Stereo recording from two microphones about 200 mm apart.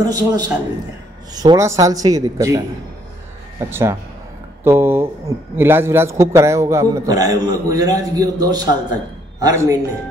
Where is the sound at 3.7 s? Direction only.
15° right (ahead or behind).